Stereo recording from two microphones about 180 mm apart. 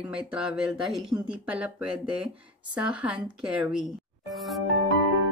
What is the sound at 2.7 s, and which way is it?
Speech, 5° right (ahead or behind).